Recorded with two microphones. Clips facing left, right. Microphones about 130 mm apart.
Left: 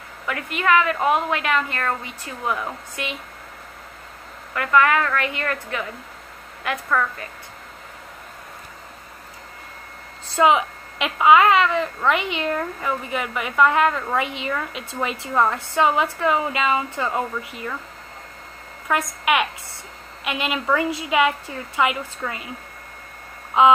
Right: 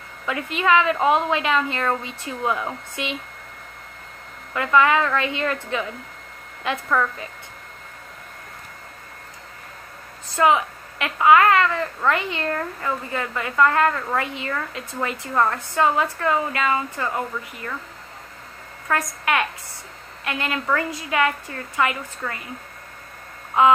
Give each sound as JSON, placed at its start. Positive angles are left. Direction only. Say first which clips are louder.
{"t": 0.3, "sound": "a woman's voice", "louder": "even", "side_deg": -20}
{"t": 4.6, "sound": "a woman's voice", "louder": "even", "side_deg": -20}
{"t": 6.9, "sound": "a woman's voice", "louder": "even", "side_deg": -10}
{"t": 10.3, "sound": "a woman's voice", "louder": "left 1 dB", "side_deg": 20}
{"t": 18.9, "sound": "a woman's voice", "louder": "left 2 dB", "side_deg": 15}
{"t": 23.6, "sound": "a sound", "louder": "left 1 dB", "side_deg": 20}